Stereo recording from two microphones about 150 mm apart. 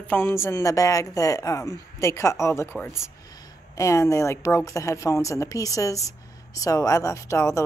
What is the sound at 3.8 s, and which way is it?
A woman's voice, 20° left (ahead or behind).